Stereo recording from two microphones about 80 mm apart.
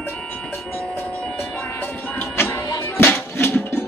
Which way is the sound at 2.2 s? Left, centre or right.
Left.